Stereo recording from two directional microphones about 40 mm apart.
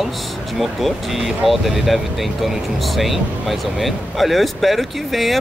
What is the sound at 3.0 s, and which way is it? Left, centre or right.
Speech, centre.